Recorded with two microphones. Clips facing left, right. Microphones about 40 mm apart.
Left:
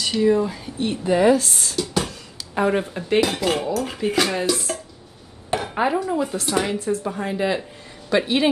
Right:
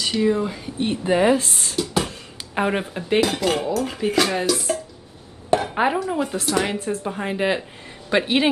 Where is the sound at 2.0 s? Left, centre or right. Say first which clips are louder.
Right 1 dB; right.